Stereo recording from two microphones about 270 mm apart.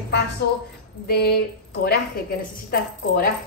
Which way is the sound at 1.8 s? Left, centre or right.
Left.